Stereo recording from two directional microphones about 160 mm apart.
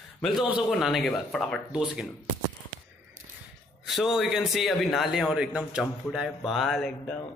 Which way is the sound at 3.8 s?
Centre (ahead or behind).